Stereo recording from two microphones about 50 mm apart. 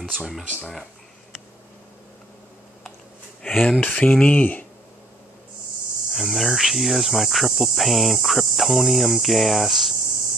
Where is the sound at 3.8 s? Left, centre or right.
Left.